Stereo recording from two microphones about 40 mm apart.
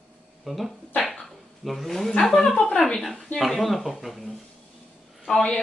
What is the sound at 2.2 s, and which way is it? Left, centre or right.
Speech, centre.